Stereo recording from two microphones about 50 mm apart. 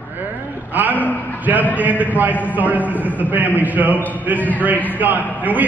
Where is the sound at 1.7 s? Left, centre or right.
Right.